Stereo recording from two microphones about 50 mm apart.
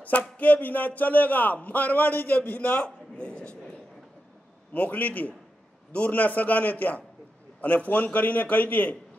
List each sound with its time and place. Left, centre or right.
0.4 s a man's voice: left
4.7 s a man's voice: left